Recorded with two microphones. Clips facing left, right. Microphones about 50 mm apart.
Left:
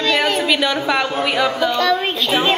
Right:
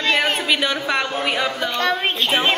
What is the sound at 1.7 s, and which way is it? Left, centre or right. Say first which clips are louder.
Speech: left 3 dB; right.